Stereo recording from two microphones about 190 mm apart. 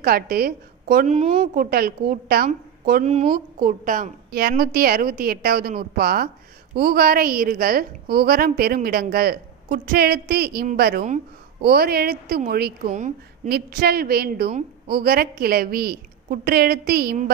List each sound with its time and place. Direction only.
0.0 s a woman's voice: 50° right (ahead or behind)
1.1 s a woman's voice: 35° right (ahead or behind); by 17.3 s 55° right (ahead or behind)